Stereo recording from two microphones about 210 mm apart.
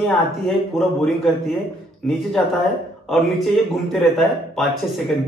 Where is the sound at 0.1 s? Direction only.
Centre (ahead or behind).